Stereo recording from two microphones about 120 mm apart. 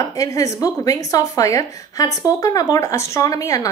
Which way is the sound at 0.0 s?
25° left (ahead or behind).